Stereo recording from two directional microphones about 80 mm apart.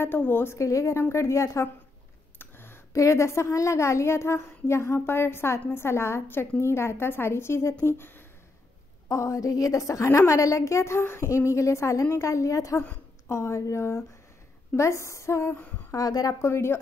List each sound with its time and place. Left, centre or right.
0.0 s a woman's voice: left
0.7 s a child's voice: left
2.3 s a sound: left
2.9 s a child's voice: left
9.1 s a child's voice: left
15.9 s a woman's voice: left
16.3 s a child's voice: left